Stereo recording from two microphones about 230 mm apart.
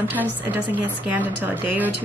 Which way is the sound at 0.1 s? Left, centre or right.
Centre.